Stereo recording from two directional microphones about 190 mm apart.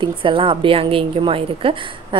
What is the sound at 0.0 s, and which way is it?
A woman's voice, 25° right (ahead or behind).